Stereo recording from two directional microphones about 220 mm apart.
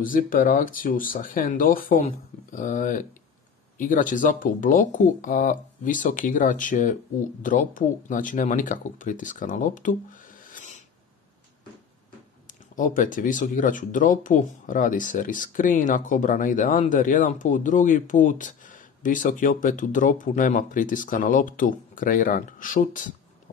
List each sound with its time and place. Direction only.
0.0 s speech: 40° left (ahead or behind)
10.5 s a sound: 35° left (ahead or behind)
12.7 s speech: 35° left (ahead or behind)